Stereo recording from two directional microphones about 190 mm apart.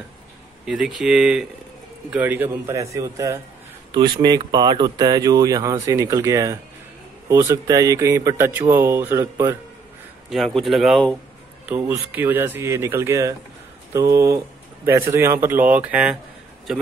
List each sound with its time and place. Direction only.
0.7 s speech: centre (ahead or behind)
10.3 s speech: centre (ahead or behind)
11.7 s speech: 10° right (ahead or behind)